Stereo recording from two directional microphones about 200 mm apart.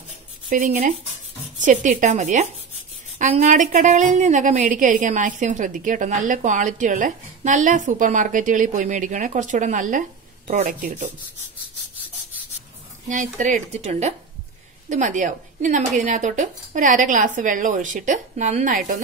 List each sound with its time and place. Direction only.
0.5 s a woman's voice: 40° right (ahead or behind)
13.1 s a woman's voice: 40° right (ahead or behind)